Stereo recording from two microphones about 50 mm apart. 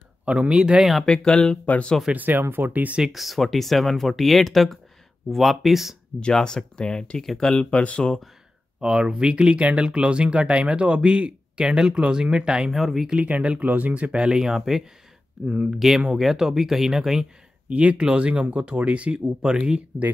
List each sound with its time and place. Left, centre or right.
0.2 s speech: right
1.0 s speech: centre
2.1 s speech: right
3.1 s speech: centre
6.1 s speech: centre
7.7 s speech: left
8.8 s speech: centre
12.7 s speech: centre
13.1 s speech: right; by 14.8 s centre
15.4 s speech: centre
15.7 s speech: centre
17.6 s speech: right